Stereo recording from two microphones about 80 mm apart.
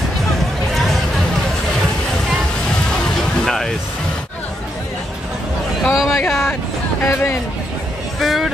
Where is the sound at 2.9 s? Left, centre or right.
Centre.